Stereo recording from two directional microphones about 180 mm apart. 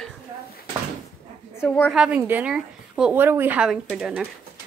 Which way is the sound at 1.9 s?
5° right (ahead or behind).